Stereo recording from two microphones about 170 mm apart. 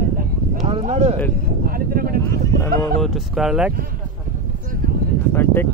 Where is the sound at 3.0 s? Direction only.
Centre (ahead or behind).